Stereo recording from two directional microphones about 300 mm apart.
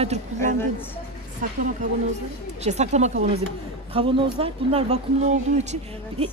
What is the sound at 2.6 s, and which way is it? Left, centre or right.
Speech, right.